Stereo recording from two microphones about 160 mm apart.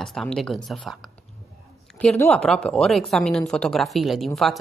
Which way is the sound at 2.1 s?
15° left (ahead or behind).